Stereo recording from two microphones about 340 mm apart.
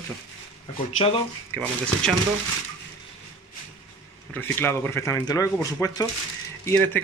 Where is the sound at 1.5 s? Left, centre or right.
Centre.